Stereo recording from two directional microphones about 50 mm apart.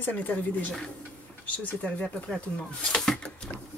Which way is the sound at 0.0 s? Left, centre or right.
Left.